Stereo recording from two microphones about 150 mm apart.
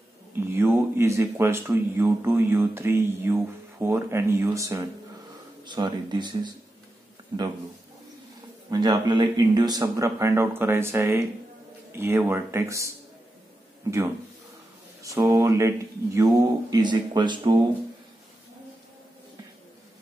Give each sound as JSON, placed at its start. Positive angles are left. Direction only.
{"t": 0.5, "sound": "speech", "side_deg": -15}
{"t": 8.6, "sound": "speech", "side_deg": -25}
{"t": 15.0, "sound": "speech", "side_deg": -20}